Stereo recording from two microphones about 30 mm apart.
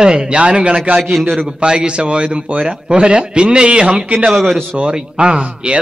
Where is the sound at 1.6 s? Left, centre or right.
Right.